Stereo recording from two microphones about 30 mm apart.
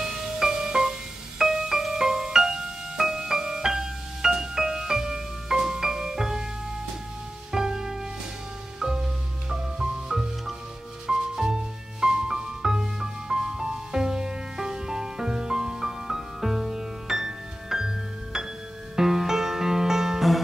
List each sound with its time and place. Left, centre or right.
0.0 s music: centre
7.5 s music: centre
20.2 s music: centre